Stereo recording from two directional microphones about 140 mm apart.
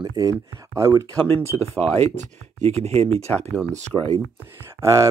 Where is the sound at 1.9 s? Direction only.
55° right (ahead or behind).